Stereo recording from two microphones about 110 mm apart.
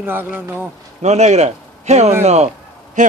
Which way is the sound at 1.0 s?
90° right.